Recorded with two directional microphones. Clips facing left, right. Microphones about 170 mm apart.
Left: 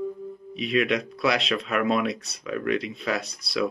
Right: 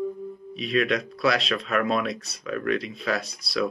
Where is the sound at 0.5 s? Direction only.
20° left (ahead or behind).